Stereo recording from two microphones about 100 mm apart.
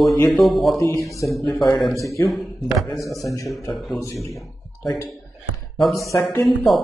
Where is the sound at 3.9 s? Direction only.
30° left (ahead or behind).